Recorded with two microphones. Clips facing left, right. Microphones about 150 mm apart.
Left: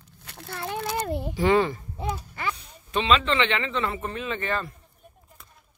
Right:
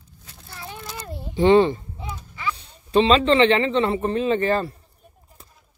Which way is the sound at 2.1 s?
55° left (ahead or behind).